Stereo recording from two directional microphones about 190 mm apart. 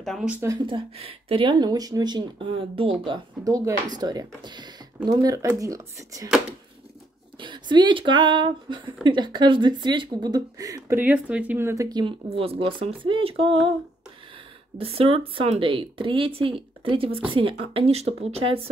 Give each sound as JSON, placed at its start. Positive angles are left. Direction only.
{"t": 0.0, "sound": "speech", "side_deg": 0}
{"t": 0.5, "sound": "speech", "side_deg": -25}
{"t": 7.3, "sound": "speech", "side_deg": -25}
{"t": 14.8, "sound": "speech", "side_deg": -30}